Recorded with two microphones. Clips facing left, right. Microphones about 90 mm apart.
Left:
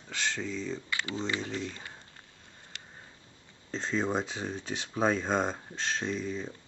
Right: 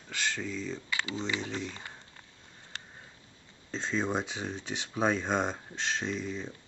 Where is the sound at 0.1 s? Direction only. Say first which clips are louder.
Left 1 dB; 5° right (ahead or behind).